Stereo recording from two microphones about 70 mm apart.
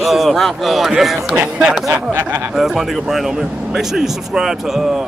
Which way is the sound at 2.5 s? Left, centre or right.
Centre.